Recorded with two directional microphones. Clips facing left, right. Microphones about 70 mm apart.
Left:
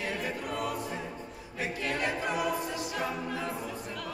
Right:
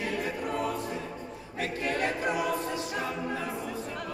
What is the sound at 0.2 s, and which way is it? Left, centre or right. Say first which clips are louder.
Choir: right 3 dB; right.